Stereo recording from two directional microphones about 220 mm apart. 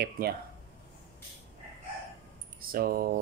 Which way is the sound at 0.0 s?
45° right (ahead or behind).